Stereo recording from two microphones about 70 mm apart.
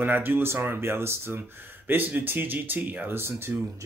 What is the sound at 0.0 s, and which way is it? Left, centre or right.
Speech, right.